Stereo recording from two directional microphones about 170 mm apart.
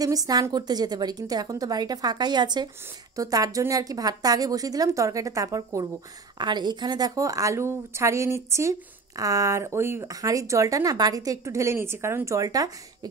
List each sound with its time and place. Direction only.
0.0 s speech: 20° right (ahead or behind)